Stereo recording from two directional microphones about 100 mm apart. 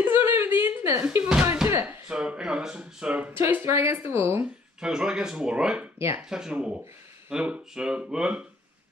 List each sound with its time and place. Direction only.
0.0 s a sound: 20° right (ahead or behind)
2.0 s speech: 10° right (ahead or behind)
3.3 s speech: 25° right (ahead or behind)
4.7 s speech: 5° right (ahead or behind)
5.9 s speech: 25° right (ahead or behind)
6.2 s speech: 5° right (ahead or behind)